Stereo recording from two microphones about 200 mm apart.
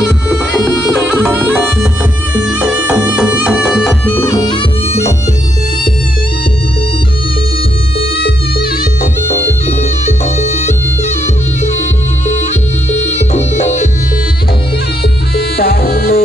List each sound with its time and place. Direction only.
1.0 s music: 10° right (ahead or behind)
2.3 s music: 5° right (ahead or behind)
4.1 s music: 15° left (ahead or behind)
12.9 s music: 35° left (ahead or behind)
15.3 s music: 50° left (ahead or behind)